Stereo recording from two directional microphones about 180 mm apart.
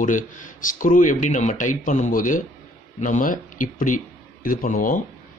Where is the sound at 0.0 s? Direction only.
45° left (ahead or behind).